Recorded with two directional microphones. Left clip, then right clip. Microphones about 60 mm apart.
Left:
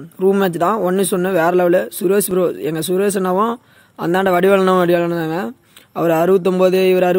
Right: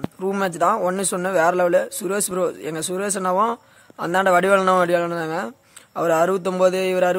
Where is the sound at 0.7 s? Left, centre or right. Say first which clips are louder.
Left 5 dB; left.